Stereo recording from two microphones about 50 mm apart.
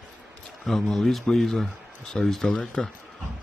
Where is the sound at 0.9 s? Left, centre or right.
Centre.